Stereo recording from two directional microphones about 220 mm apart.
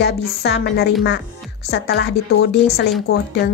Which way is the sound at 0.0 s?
50° left (ahead or behind).